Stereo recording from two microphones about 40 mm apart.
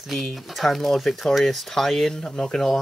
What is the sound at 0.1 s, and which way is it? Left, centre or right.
Speech, centre.